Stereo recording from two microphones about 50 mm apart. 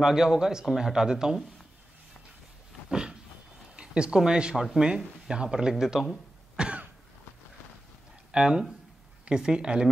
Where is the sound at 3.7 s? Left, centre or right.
Centre.